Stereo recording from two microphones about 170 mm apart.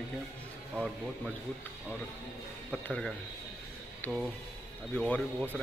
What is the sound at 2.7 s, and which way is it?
A man's voice, 5° left (ahead or behind).